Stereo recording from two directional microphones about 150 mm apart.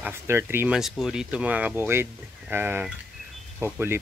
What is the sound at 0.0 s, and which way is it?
Speech, 15° right (ahead or behind).